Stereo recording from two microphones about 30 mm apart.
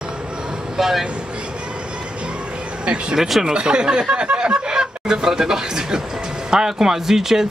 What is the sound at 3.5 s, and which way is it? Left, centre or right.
Speech, right.